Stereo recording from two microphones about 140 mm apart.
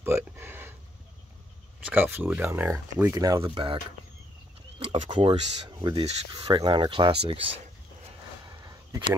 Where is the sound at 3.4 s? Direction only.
40° right (ahead or behind).